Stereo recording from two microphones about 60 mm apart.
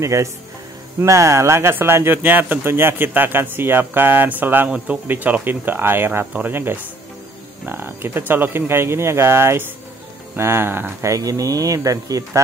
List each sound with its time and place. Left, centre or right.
0.0 s speech: right
1.8 s speech: right
4.6 s speech: right
11.0 s speech: right